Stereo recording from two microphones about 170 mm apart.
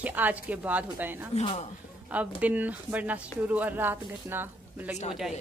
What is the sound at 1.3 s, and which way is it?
Speech, 40° left (ahead or behind).